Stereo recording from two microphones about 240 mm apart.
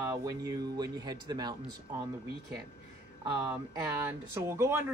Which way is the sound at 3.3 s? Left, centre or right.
Centre.